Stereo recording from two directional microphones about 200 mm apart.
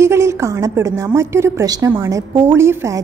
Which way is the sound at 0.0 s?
15° right (ahead or behind).